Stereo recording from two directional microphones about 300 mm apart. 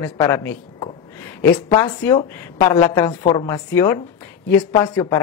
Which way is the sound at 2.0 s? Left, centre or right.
Centre.